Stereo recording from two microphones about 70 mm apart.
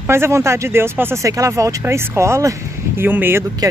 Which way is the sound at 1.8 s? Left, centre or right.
Right.